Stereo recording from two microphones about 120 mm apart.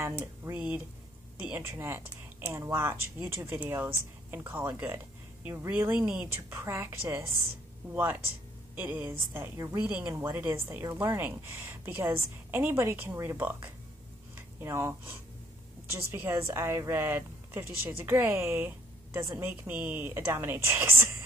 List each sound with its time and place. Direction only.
0.2 s a woman's voice: 10° right (ahead or behind)
6.6 s a woman's voice: 20° right (ahead or behind)